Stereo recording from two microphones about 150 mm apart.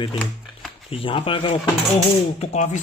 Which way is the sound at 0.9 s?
35° left (ahead or behind).